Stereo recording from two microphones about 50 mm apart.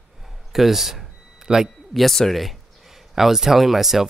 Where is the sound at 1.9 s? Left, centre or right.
Centre.